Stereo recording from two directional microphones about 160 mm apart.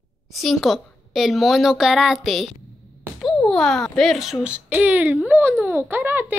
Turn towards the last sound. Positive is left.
turn(degrees=-10)  # may be behind; listen again after turning